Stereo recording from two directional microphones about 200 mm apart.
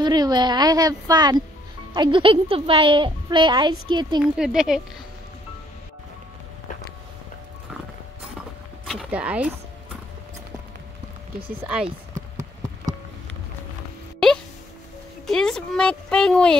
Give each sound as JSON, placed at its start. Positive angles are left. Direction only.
{"t": 0.0, "sound": "a woman's voice", "side_deg": -20}
{"t": 4.2, "sound": "speech", "side_deg": -5}
{"t": 8.8, "sound": "a sound", "side_deg": -5}
{"t": 11.6, "sound": "speech", "side_deg": -5}
{"t": 15.2, "sound": "speech", "side_deg": 0}